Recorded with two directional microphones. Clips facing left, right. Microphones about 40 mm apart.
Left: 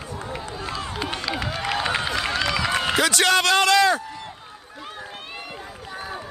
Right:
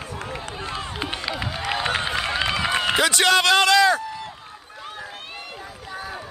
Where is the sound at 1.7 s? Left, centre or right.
Centre.